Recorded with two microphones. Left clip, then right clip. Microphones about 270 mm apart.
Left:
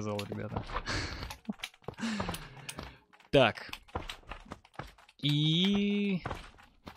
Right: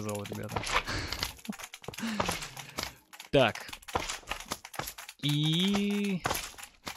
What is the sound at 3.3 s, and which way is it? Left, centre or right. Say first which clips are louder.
Speech: even; centre.